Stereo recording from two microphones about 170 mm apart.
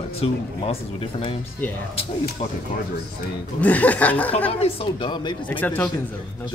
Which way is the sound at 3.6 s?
10° left (ahead or behind).